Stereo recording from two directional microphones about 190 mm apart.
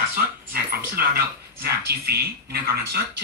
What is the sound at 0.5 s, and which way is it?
Speech, 50° right (ahead or behind).